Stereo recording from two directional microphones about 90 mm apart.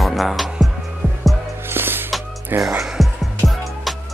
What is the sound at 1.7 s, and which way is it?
Music, 25° right (ahead or behind).